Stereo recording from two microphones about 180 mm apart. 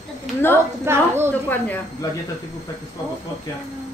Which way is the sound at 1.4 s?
10° left (ahead or behind).